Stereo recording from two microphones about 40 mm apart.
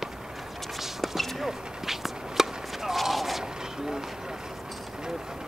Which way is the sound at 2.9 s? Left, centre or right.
Centre.